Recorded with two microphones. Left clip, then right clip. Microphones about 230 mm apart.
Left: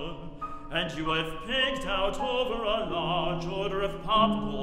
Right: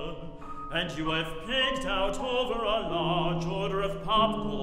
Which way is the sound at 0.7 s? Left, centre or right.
Centre.